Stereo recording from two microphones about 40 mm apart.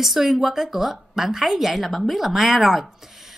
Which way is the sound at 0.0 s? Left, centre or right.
Centre.